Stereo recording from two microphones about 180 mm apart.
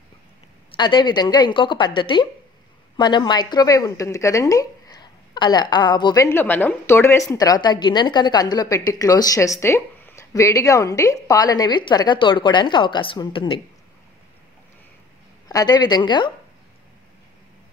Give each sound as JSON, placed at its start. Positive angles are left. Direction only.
{"t": 0.7, "sound": "a woman's voice", "side_deg": 25}
{"t": 6.2, "sound": "a woman's voice", "side_deg": 10}
{"t": 15.4, "sound": "a woman's voice", "side_deg": 20}